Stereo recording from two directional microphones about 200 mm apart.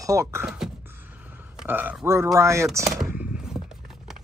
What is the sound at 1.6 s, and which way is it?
Speech, 10° right (ahead or behind).